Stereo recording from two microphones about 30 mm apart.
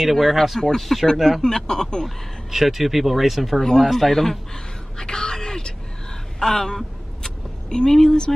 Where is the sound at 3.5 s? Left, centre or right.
Centre.